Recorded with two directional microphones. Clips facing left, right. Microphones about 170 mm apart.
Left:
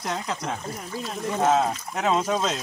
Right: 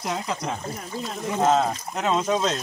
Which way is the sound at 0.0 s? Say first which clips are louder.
Right 1 dB; centre (ahead or behind).